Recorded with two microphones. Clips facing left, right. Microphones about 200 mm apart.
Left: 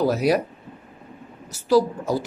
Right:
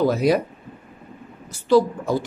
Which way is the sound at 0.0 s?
5° left (ahead or behind).